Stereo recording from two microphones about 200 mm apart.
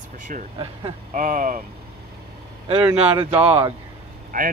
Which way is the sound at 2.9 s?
30° right (ahead or behind).